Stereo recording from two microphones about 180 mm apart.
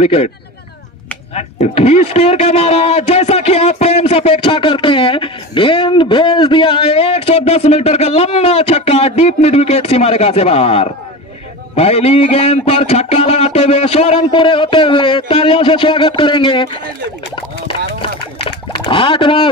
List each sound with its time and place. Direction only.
0.0 s speech: 35° left (ahead or behind)
1.3 s speech: 35° left (ahead or behind)
18.9 s speech: 30° left (ahead or behind)